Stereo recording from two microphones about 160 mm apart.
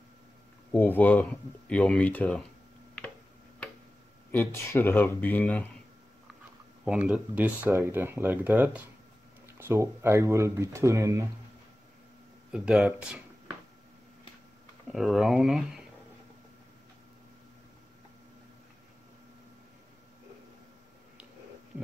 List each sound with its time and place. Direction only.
0.7 s speech: 10° left (ahead or behind)
4.3 s speech: 15° left (ahead or behind)
7.1 s speech: 10° right (ahead or behind)
12.5 s speech: centre (ahead or behind)
14.9 s speech: centre (ahead or behind)